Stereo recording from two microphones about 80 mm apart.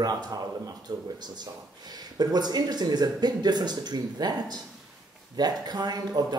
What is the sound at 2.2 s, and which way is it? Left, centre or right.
Speech, right.